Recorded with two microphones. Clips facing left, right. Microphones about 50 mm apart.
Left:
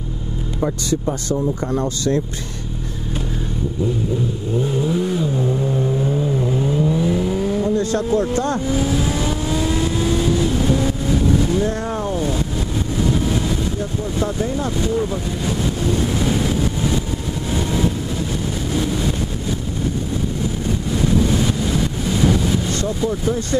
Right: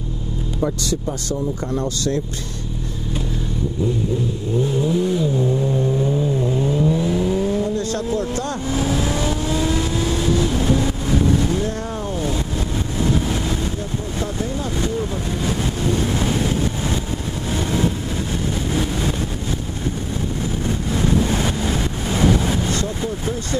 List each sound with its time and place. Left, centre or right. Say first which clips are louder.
1.0 s speech: left 3 dB; centre
4.6 s vehicle: right 1 dB; centre
7.7 s speech: left 4 dB; left
8.9 s vehicle: left 1 dB; centre
15.9 s vehicle: even; right
18.7 s vehicle: left 2 dB; right
21.2 s vehicle: left 2 dB; right